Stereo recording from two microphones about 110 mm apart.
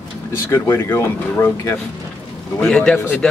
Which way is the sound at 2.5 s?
5° left (ahead or behind).